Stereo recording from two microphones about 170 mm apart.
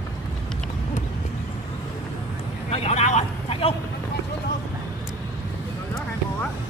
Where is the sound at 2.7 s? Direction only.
40° left (ahead or behind).